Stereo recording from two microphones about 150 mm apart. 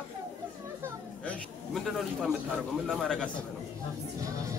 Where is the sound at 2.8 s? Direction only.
Centre (ahead or behind).